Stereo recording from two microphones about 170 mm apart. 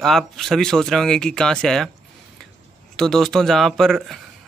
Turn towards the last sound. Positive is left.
turn(degrees=0)  # may be behind; listen again after turning